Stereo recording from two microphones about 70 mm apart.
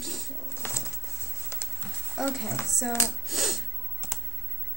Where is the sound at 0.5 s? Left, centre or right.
Left.